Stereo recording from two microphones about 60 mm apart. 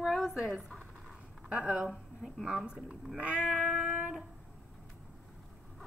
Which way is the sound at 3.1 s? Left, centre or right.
Right.